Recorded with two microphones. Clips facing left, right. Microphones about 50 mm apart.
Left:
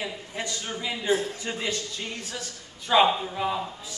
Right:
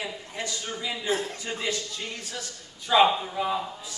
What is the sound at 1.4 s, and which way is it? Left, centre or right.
Speech, centre.